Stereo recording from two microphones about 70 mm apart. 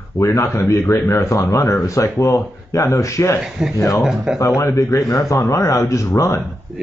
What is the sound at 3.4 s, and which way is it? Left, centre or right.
Speech, centre.